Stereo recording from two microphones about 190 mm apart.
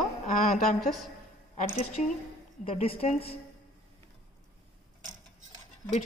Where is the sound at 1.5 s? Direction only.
40° left (ahead or behind).